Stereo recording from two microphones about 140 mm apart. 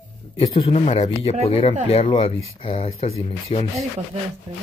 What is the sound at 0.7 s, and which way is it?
Speech, 45° left (ahead or behind).